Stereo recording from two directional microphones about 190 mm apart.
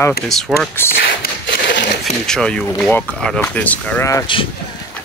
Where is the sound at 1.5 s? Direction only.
70° left (ahead or behind).